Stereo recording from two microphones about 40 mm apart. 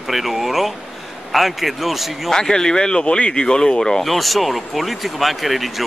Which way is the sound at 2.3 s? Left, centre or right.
Centre.